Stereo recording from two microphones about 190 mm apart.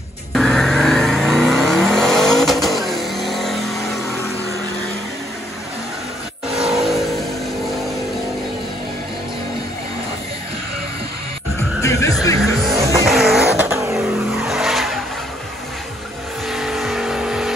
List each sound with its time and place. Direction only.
0.3 s vehicle: centre (ahead or behind)
6.5 s vehicle: centre (ahead or behind)
11.8 s music: 15° left (ahead or behind)
12.7 s vehicle: 15° right (ahead or behind)
13.0 s vehicle: centre (ahead or behind)
13.7 s vehicle: 15° right (ahead or behind)
13.9 s vehicle: centre (ahead or behind)
16.4 s vehicle: centre (ahead or behind)